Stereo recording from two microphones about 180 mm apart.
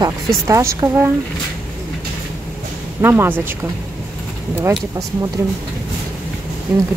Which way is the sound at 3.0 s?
10° right (ahead or behind).